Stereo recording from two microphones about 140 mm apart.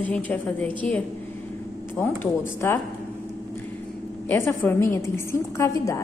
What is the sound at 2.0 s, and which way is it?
Speech, 10° left (ahead or behind).